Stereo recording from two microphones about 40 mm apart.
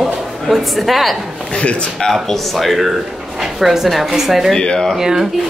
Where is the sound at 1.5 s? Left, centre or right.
Left.